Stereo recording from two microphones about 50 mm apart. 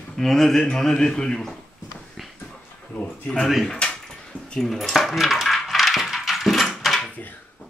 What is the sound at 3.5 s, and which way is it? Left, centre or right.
Speech, centre.